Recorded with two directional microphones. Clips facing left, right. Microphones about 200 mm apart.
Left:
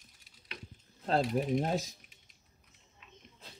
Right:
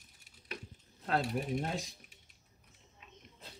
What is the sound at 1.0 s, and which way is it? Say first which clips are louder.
Speech: left 4 dB; 30° left (ahead or behind).